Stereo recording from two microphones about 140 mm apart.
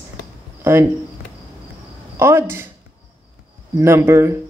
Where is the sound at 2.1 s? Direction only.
20° right (ahead or behind).